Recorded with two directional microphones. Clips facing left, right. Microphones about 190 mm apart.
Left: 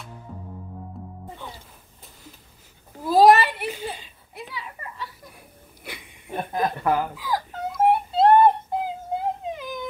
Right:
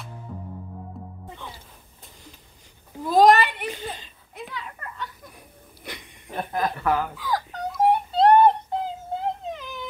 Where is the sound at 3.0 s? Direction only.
5° left (ahead or behind).